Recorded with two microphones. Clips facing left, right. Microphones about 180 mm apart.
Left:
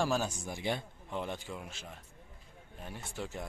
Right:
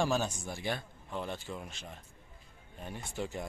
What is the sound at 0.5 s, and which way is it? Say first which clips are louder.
Speech: left 1 dB; 20° left (ahead or behind).